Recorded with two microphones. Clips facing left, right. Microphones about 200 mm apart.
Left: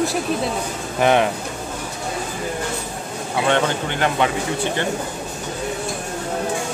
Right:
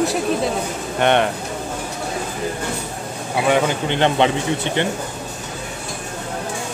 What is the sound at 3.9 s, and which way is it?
Speech, 25° right (ahead or behind).